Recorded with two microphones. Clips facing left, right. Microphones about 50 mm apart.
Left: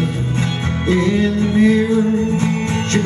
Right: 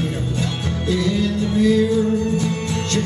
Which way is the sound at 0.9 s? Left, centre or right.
Left.